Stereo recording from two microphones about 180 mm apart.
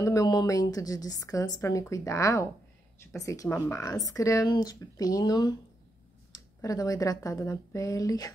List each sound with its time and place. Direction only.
0.0 s speech: 20° left (ahead or behind)